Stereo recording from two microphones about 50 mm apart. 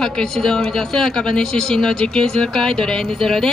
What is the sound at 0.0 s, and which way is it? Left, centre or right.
Speech, centre.